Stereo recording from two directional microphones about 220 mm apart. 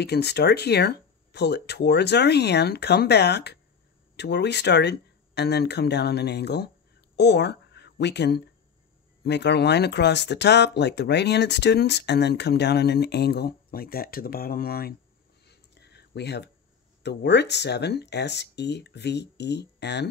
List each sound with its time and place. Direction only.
0.0 s speech: 50° left (ahead or behind)
15.4 s a sound: 50° left (ahead or behind)
17.0 s speech: 50° left (ahead or behind)